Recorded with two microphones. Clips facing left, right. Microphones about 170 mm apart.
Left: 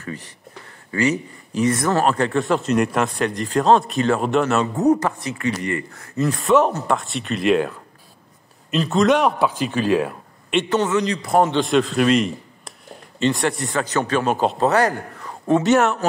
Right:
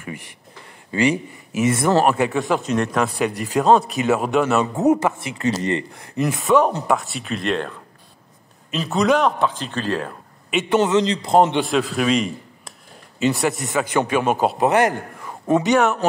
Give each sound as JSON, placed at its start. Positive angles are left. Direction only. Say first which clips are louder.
{"t": 0.9, "sound": "a man's voice", "louder": "right 1 dB", "side_deg": -20}
{"t": 3.2, "sound": "a man's voice", "louder": "even", "side_deg": -10}
{"t": 5.4, "sound": "a man's voice", "louder": "right 3 dB", "side_deg": -25}
{"t": 5.9, "sound": "a man's voice", "louder": "left 1 dB", "side_deg": -15}
{"t": 6.4, "sound": "a man's voice", "louder": "even", "side_deg": 0}
{"t": 10.5, "sound": "a man's voice", "louder": "even", "side_deg": -5}
{"t": 10.8, "sound": "a man's voice", "louder": "right 2 dB", "side_deg": -25}
{"t": 11.6, "sound": "a man's voice", "louder": "left 3 dB", "side_deg": 0}
{"t": 14.7, "sound": "a man's voice", "louder": "right 1 dB", "side_deg": -20}
{"t": 15.6, "sound": "a man's voice", "louder": "left 1 dB", "side_deg": 0}